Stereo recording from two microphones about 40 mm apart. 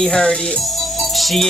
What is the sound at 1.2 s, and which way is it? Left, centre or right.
Music, centre.